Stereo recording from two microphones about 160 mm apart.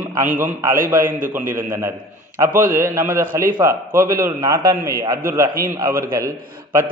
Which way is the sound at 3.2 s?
60° right (ahead or behind).